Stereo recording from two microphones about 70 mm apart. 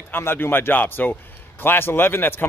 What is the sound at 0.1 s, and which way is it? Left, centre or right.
Speech, left.